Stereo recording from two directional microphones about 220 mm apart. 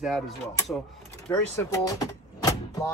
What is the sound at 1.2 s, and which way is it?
Speech, 10° left (ahead or behind).